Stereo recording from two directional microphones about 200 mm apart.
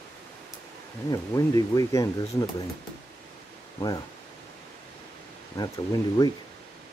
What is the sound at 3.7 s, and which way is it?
Speech, 20° left (ahead or behind).